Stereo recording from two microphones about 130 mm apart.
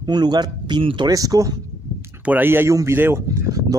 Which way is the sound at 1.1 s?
25° right (ahead or behind).